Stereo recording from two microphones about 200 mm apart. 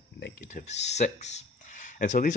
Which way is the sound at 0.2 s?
40° left (ahead or behind).